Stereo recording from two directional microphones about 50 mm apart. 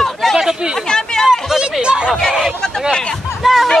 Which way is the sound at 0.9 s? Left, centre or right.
Centre.